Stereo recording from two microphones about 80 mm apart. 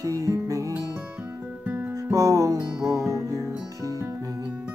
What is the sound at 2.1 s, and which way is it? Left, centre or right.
Music, right.